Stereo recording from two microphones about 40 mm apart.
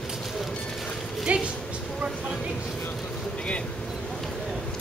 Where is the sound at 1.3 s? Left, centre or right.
Right.